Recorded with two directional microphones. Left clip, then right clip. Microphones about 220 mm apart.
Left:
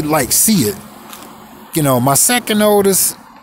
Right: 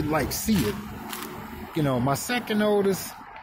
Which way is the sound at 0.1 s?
35° left (ahead or behind).